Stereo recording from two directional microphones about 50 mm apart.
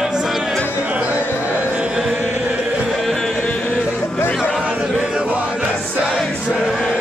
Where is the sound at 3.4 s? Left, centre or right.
Left.